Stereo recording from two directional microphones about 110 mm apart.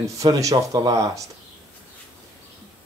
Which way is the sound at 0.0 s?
30° right (ahead or behind).